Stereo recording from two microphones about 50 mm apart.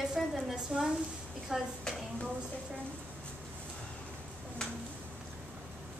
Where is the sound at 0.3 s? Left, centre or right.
Centre.